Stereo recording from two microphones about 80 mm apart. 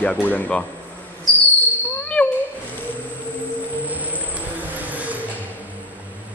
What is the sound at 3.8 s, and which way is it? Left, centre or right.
Vehicle, centre.